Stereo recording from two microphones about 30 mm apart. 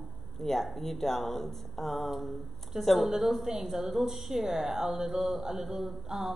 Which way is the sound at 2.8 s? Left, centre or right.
Centre.